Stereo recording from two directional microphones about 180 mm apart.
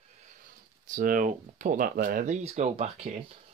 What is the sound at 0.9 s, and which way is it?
Speech, 50° right (ahead or behind).